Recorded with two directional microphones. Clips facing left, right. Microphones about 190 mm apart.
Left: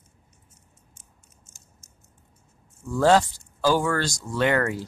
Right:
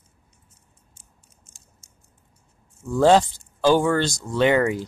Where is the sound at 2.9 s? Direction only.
20° right (ahead or behind).